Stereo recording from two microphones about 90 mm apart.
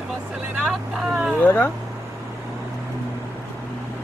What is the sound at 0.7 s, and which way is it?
Vehicle, 10° right (ahead or behind).